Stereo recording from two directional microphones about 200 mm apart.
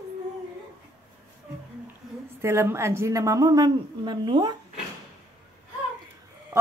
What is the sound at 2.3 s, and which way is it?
A woman's voice, 10° right (ahead or behind).